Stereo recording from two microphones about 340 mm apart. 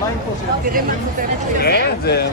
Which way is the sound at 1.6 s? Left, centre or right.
Left.